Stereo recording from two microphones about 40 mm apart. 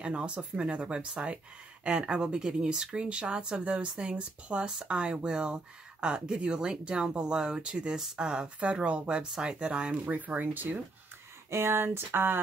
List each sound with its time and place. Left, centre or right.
0.0 s speech: right
9.9 s speech: right
11.5 s speech: right